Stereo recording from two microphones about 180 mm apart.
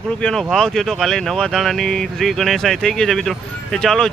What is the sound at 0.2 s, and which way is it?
Speech, 5° left (ahead or behind).